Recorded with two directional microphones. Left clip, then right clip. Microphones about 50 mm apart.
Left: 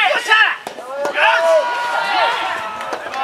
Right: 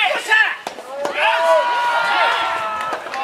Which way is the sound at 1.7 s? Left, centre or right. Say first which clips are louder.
Right 1 dB; centre.